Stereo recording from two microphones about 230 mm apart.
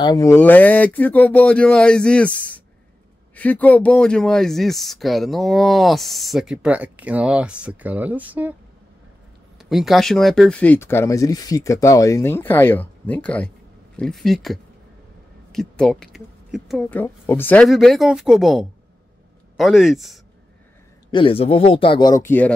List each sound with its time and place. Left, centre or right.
0.0 s speech: centre
9.6 s speech: centre
21.1 s speech: left